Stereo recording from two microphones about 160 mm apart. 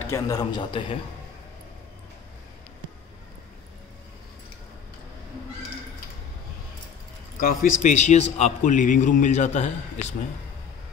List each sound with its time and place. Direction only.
0.0 s a man's voice: 20° left (ahead or behind)
7.3 s a man's voice: 60° left (ahead or behind)